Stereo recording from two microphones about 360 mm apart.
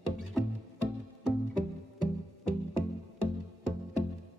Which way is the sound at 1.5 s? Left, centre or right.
Left.